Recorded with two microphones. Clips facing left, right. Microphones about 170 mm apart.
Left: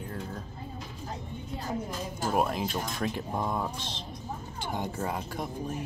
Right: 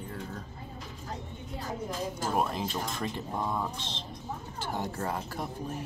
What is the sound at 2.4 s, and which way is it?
Speech, 5° left (ahead or behind).